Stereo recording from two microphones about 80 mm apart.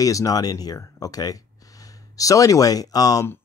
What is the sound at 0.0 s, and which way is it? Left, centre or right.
Speech, left.